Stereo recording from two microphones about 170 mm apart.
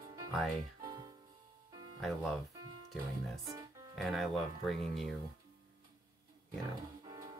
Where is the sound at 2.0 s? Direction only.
Centre (ahead or behind).